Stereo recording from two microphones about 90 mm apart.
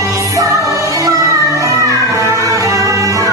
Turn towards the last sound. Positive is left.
turn(degrees=-40)  # may be behind; listen again after turning